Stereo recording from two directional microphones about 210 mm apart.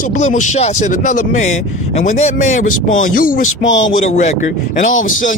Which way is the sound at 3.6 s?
60° left (ahead or behind).